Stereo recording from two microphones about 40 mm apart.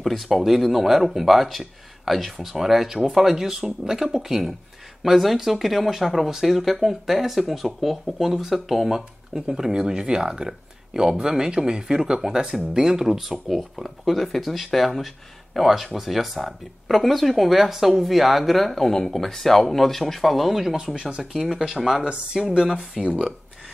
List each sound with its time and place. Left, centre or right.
0.0 s speech: centre
9.3 s speech: centre
21.5 s speech: centre
21.7 s speech: centre
22.0 s speech: right